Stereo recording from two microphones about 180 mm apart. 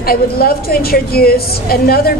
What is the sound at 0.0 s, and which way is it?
A woman's voice, 55° left (ahead or behind).